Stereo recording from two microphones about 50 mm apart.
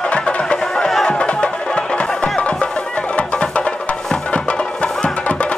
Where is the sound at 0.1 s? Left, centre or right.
Left.